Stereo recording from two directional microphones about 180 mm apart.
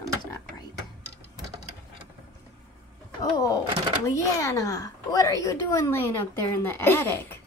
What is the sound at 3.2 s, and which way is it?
Speech, 20° left (ahead or behind).